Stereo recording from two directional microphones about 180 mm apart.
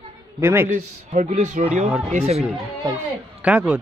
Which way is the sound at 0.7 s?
45° right (ahead or behind).